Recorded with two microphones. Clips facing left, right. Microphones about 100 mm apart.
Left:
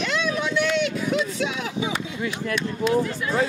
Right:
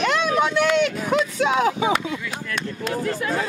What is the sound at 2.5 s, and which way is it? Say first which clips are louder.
Speech: left 5 dB; 45° right (ahead or behind).